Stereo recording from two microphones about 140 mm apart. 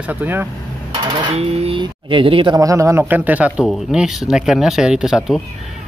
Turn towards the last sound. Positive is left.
turn(degrees=-5)  # may be behind; listen again after turning